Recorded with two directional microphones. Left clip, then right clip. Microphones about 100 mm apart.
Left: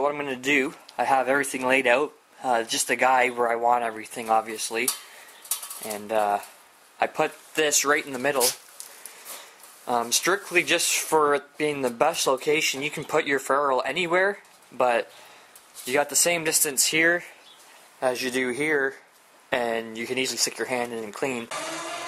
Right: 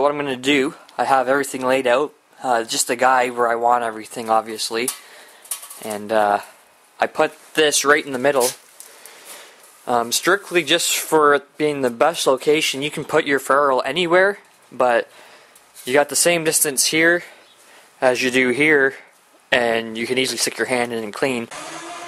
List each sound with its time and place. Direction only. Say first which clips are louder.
0.0 s speech: right 7 dB; 20° right (ahead or behind)
5.9 s speech: right 7 dB; 20° right (ahead or behind)
9.8 s speech: right 6 dB; 15° right (ahead or behind)